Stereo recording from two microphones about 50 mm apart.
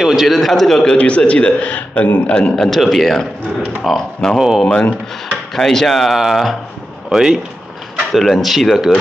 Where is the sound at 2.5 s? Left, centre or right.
Centre.